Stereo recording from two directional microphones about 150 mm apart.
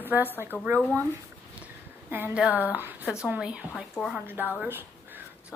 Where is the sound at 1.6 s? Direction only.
15° right (ahead or behind).